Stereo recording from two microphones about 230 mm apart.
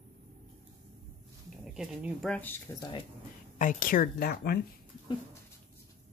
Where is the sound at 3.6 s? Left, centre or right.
Left.